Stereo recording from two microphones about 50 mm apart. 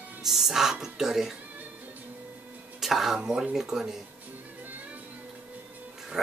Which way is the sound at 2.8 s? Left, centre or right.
Centre.